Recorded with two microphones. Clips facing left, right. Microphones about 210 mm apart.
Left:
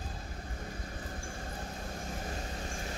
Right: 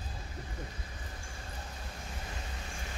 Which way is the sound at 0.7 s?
45° left (ahead or behind).